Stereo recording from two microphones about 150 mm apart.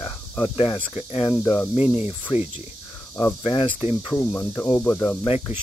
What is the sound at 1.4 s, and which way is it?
Cricket, 15° left (ahead or behind).